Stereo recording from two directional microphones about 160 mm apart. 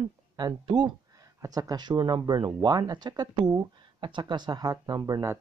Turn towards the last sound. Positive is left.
turn(degrees=-20)  # may be behind; listen again after turning